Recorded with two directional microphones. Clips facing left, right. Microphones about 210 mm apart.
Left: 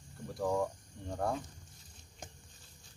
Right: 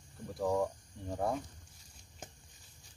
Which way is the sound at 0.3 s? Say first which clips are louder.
Right 1 dB; 5° right (ahead or behind).